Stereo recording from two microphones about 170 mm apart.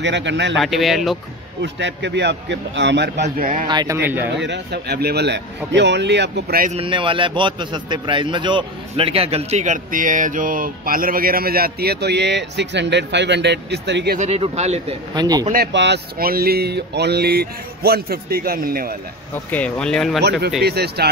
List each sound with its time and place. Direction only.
0.0 s a man's voice: 90° right
0.6 s speech: centre (ahead or behind)
1.6 s a man's voice: 90° right; by 3.6 s 55° right (ahead or behind)
3.6 s speech: 20° right (ahead or behind)
4.4 s speech: 80° right
5.7 s a man's voice: 90° right; by 6.7 s 65° right (ahead or behind)
6.7 s a man's voice: 30° right (ahead or behind); by 14.1 s 85° right
14.1 s speech: 40° right (ahead or behind)
15.1 s speech: 20° right (ahead or behind)
15.5 s speech: 80° right; by 18.9 s 60° right (ahead or behind)
19.3 s speech: 10° left (ahead or behind)
20.2 s speech: 75° right (ahead or behind)